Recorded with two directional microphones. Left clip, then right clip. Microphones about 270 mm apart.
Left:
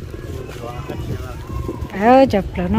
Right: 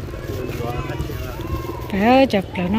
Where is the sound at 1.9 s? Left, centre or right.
Centre.